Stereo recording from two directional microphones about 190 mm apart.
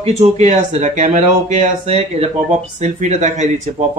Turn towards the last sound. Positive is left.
turn(degrees=-40)  # may be behind; listen again after turning